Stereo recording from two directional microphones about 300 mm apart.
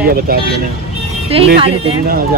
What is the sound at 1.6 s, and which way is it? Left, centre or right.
Speech, centre.